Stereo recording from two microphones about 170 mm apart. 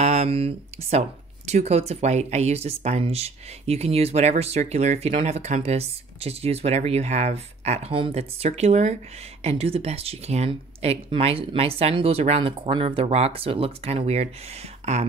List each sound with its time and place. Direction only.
0.0 s speech: 40° right (ahead or behind)